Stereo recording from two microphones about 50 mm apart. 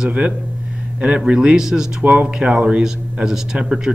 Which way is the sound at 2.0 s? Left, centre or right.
Right.